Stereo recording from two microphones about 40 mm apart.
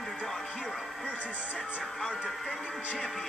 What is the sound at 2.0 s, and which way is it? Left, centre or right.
Speech, centre.